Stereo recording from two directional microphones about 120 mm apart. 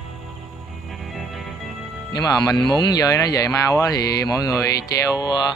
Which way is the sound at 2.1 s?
30° left (ahead or behind).